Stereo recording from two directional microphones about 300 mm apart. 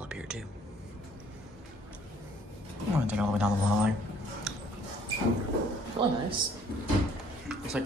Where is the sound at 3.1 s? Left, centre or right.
Centre.